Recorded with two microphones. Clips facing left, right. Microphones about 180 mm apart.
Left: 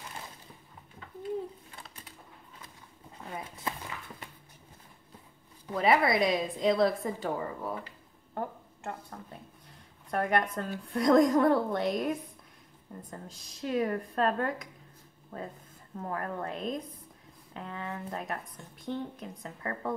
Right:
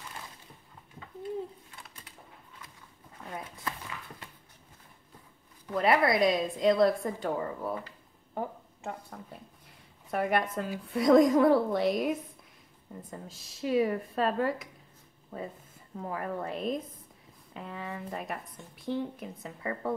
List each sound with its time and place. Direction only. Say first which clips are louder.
5.7 s a woman's voice: even; centre (ahead or behind)